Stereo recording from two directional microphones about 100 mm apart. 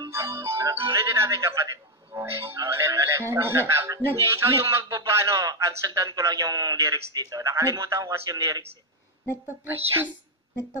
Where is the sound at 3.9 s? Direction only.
25° right (ahead or behind).